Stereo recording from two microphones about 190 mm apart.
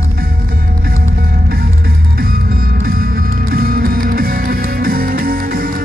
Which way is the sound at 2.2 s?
50° right (ahead or behind).